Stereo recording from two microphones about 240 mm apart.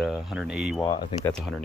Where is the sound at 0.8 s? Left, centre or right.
Centre.